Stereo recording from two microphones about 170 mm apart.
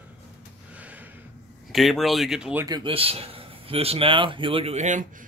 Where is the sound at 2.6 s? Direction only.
25° right (ahead or behind).